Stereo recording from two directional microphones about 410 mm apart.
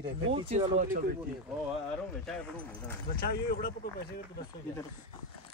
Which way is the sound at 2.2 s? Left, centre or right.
Centre.